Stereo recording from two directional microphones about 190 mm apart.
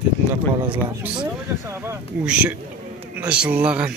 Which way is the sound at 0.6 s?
25° right (ahead or behind).